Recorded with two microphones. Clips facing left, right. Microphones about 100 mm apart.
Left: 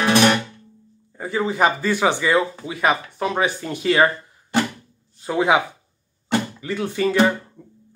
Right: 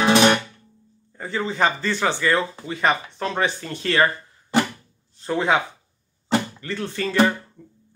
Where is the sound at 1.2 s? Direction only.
10° left (ahead or behind).